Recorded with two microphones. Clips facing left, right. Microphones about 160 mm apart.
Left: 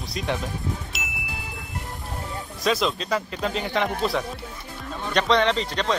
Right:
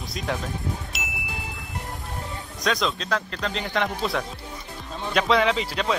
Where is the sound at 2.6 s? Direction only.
5° left (ahead or behind).